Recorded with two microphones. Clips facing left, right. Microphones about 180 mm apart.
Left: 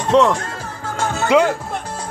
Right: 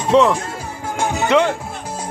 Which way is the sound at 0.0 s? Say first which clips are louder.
Even; 5° right (ahead or behind).